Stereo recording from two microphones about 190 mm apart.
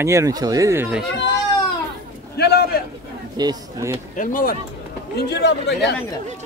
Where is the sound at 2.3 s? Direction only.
55° left (ahead or behind).